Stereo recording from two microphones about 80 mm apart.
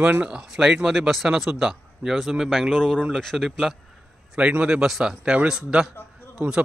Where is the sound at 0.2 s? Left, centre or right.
Centre.